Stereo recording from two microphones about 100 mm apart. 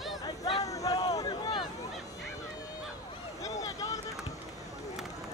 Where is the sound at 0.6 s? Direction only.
35° left (ahead or behind).